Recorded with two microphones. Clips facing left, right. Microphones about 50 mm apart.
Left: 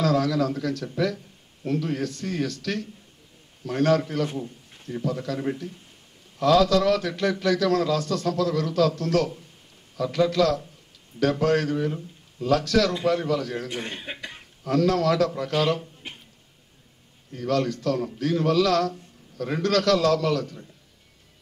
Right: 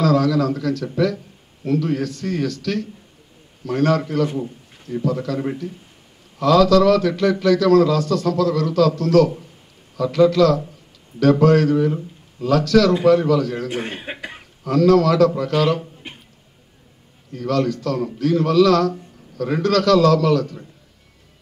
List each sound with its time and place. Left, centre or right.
0.0 s a man's voice: right
1.1 s a sound: right
1.9 s a man's voice: right
2.5 s a man's voice: right
3.6 s a man's voice: right
6.4 s a man's voice: right
11.2 s a man's voice: right
12.4 s a man's voice: right
13.7 s speech: centre
14.7 s a man's voice: right
17.4 s a man's voice: right